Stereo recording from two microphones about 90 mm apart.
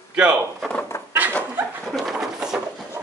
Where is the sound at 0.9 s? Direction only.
30° left (ahead or behind).